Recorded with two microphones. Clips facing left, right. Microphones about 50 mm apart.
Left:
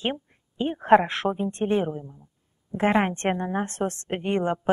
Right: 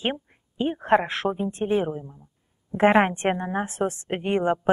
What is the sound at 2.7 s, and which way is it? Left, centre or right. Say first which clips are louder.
A woman's voice: right 4 dB; right.